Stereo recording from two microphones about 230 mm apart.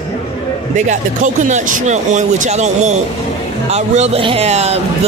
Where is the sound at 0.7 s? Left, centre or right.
Right.